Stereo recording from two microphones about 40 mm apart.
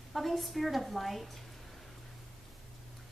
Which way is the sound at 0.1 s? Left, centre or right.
Centre.